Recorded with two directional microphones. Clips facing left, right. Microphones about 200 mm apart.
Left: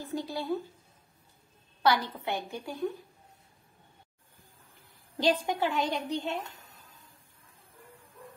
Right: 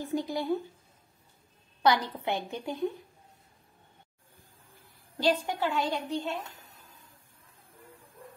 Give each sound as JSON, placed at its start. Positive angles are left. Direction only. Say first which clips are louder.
{"t": 0.0, "sound": "speech", "louder": "right 3 dB", "side_deg": -20}
{"t": 1.8, "sound": "a woman's voice", "louder": "right 1 dB", "side_deg": -20}
{"t": 5.1, "sound": "a woman's voice", "louder": "even", "side_deg": 15}